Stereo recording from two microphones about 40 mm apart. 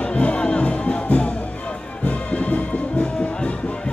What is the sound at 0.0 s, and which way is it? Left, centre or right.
Music, left.